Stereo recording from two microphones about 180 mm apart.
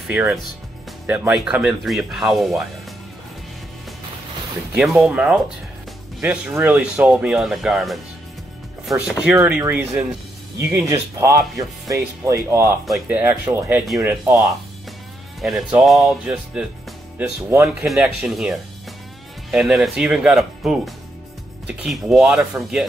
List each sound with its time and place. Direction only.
0.1 s speech: 10° right (ahead or behind)
4.7 s speech: 5° right (ahead or behind)
12.8 s speech: centre (ahead or behind)
13.2 s speech: 10° right (ahead or behind)
15.4 s speech: centre (ahead or behind)